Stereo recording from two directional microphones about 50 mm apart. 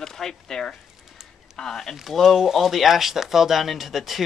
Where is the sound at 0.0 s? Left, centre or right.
Centre.